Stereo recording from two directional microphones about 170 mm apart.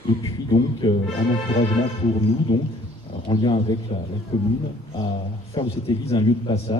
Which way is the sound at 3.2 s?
30° left (ahead or behind).